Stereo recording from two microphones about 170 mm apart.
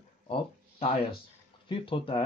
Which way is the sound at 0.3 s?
35° left (ahead or behind).